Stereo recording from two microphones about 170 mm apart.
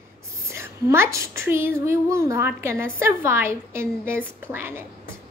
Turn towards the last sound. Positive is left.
turn(degrees=-15)  # may be behind; listen again after turning